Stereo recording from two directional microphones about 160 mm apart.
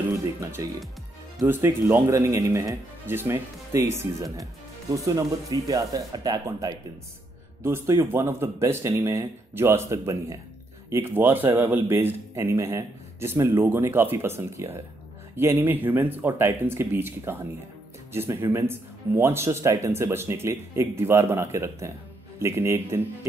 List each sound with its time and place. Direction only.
0.4 s a man's voice: 20° right (ahead or behind)